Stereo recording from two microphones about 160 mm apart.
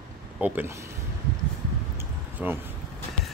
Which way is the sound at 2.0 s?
10° right (ahead or behind).